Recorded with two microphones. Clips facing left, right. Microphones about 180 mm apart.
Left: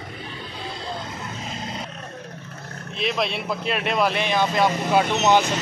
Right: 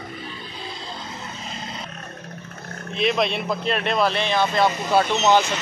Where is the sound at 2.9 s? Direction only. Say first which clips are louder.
Right 3 dB; centre (ahead or behind).